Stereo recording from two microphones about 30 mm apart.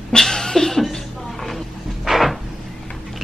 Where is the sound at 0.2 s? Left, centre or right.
Centre.